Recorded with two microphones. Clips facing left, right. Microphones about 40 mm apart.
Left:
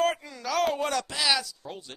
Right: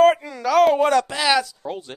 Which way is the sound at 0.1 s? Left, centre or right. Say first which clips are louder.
Right 11 dB; right.